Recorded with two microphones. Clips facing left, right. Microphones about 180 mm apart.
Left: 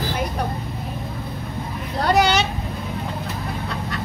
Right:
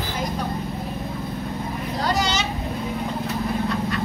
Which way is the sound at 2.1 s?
60° left (ahead or behind).